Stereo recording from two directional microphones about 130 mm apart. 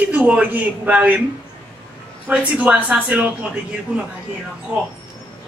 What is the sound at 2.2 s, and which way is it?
A man's voice, 10° right (ahead or behind).